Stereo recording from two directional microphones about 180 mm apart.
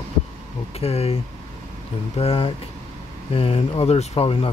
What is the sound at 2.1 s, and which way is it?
Speech, 30° left (ahead or behind).